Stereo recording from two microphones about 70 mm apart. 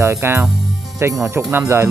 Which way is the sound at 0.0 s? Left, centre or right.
Right.